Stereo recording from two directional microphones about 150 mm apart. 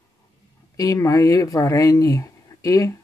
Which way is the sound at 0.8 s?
25° left (ahead or behind).